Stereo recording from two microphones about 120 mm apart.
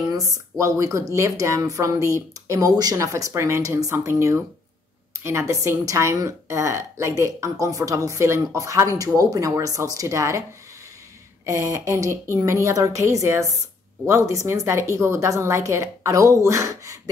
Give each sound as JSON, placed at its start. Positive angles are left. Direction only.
{"t": 0.1, "sound": "speech", "side_deg": -30}
{"t": 11.4, "sound": "speech", "side_deg": -25}